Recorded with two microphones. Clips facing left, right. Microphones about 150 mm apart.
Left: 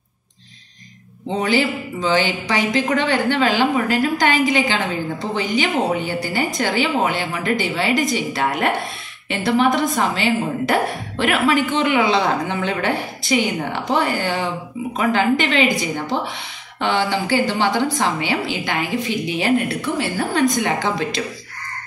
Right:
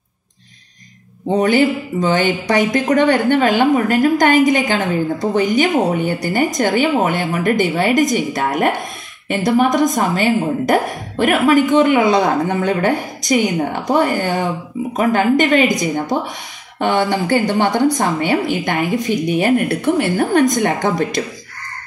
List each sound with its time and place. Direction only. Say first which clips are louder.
1.3 s speech: right 5 dB; 50° right (ahead or behind)
16.8 s speech: right 4 dB; 50° right (ahead or behind)